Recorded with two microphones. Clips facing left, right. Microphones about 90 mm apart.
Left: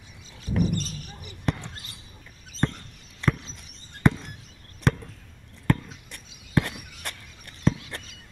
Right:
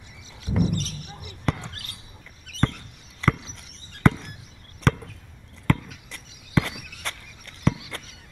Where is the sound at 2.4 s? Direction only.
65° right (ahead or behind).